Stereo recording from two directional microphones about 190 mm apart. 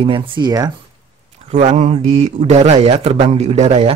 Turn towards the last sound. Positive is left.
turn(degrees=-35)  # may be behind; listen again after turning